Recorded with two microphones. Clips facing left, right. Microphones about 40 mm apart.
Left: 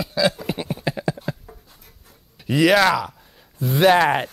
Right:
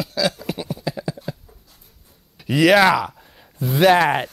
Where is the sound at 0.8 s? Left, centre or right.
Left.